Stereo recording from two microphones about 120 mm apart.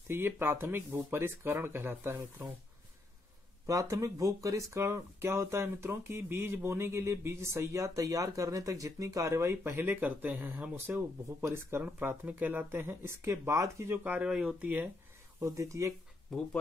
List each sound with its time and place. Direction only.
0.1 s speech: 20° right (ahead or behind)
3.6 s speech: 25° right (ahead or behind)
13.9 s speech: 15° right (ahead or behind)
15.4 s speech: 25° right (ahead or behind)